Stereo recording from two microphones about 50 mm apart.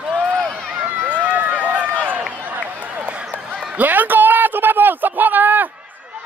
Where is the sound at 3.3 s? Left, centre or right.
Centre.